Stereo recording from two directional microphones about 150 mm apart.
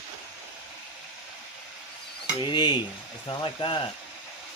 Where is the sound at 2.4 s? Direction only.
30° left (ahead or behind).